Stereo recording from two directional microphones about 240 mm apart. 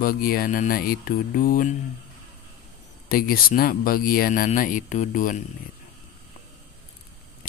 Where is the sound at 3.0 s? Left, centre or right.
Left.